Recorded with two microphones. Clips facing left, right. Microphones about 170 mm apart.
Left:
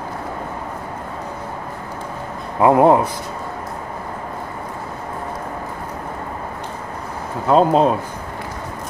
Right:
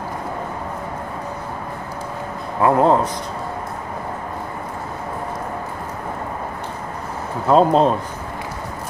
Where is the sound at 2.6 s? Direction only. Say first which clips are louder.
Left 3 dB; 20° left (ahead or behind).